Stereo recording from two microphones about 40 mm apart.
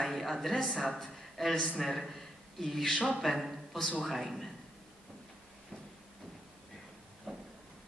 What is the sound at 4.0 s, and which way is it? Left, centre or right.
Speech, centre.